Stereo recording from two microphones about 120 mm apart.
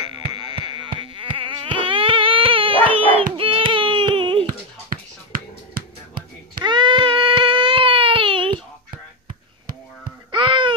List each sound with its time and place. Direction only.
0.0 s mosquito: 40° right (ahead or behind)
3.1 s a sound: 50° right (ahead or behind)
6.6 s baby cry: 40° right (ahead or behind)
10.3 s babbling: 45° right (ahead or behind)